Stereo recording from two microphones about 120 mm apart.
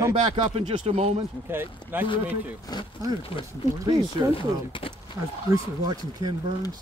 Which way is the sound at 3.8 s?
30° right (ahead or behind).